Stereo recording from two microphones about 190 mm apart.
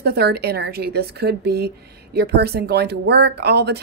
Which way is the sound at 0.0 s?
55° right (ahead or behind).